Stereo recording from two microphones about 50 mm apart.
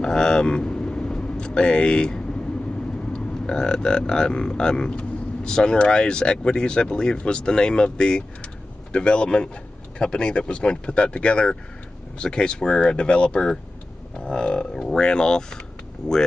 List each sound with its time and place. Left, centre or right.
0.0 s vehicle: centre
3.1 s speech: centre